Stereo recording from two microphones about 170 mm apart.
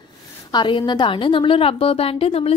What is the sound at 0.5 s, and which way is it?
A woman's voice, 25° left (ahead or behind).